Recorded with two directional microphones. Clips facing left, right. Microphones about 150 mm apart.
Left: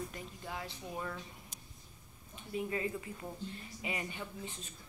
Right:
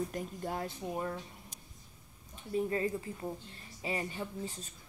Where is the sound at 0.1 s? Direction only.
50° right (ahead or behind).